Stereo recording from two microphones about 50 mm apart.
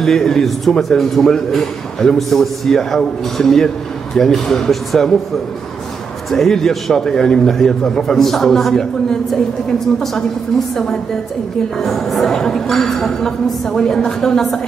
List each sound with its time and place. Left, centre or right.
0.0 s speech: centre
6.3 s speech: centre
11.8 s speech: centre